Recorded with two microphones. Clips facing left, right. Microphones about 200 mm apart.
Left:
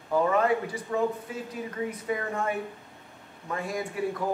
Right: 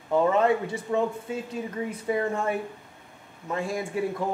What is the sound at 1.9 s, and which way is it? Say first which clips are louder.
A woman's voice: right 4 dB; 30° right (ahead or behind).